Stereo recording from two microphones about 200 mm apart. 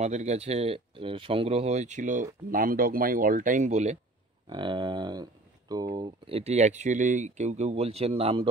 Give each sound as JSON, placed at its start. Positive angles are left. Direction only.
{"t": 0.0, "sound": "speech", "side_deg": -35}
{"t": 4.5, "sound": "speech", "side_deg": -25}